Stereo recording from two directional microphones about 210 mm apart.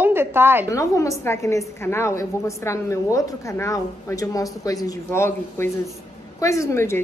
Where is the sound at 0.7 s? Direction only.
15° left (ahead or behind).